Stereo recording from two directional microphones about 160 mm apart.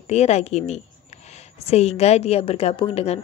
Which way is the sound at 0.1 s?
45° left (ahead or behind).